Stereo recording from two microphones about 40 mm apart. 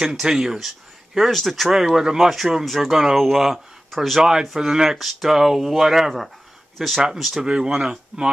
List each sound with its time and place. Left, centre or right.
0.0 s speech: centre
4.2 s speech: centre
4.9 s speech: centre
7.4 s speech: right